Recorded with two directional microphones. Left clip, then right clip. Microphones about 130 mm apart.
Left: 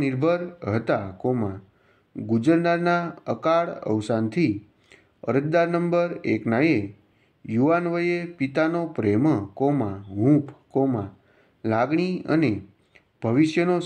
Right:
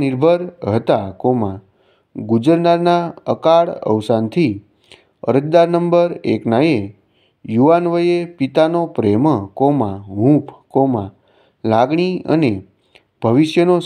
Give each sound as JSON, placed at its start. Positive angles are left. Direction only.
{"t": 0.0, "sound": "speech", "side_deg": -40}